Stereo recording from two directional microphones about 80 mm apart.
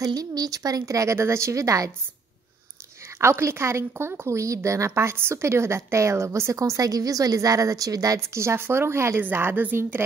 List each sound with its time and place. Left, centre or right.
0.0 s a woman's voice: right
3.2 s a woman's voice: right